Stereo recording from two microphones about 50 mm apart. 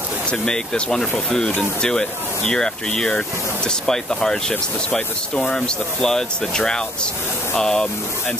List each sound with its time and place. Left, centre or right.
0.3 s speech: centre